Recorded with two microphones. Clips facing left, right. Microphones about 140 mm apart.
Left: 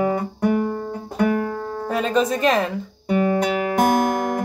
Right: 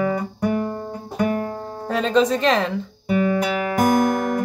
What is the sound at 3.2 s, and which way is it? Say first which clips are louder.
Music: left 1 dB; 40° left (ahead or behind).